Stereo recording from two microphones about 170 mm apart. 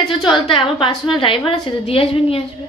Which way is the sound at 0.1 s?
30° left (ahead or behind).